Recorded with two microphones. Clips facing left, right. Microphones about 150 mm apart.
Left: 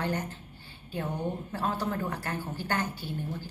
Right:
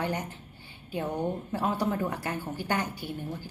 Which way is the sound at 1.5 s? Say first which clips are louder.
Right 3 dB; 15° right (ahead or behind).